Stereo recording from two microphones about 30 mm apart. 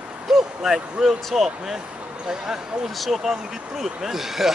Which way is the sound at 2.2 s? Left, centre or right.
Right.